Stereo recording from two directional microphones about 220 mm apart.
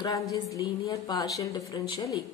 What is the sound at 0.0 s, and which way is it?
Speech, 15° left (ahead or behind).